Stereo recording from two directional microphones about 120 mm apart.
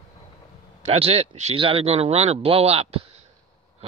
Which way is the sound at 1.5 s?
50° right (ahead or behind).